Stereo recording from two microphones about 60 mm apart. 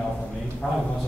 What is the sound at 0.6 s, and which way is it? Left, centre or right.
Speech, centre.